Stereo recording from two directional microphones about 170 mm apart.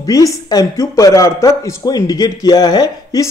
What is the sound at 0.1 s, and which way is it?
A man's voice, 20° left (ahead or behind).